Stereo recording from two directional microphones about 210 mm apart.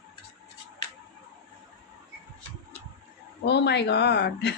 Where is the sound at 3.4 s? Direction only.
55° left (ahead or behind).